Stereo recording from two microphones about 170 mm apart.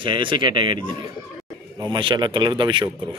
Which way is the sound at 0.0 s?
30° right (ahead or behind).